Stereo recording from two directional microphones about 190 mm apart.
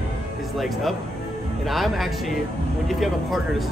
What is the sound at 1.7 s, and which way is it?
Speech, centre (ahead or behind).